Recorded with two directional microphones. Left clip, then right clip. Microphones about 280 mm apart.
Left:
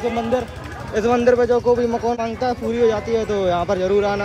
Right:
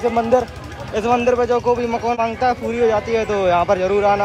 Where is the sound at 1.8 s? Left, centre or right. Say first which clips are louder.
Even; centre.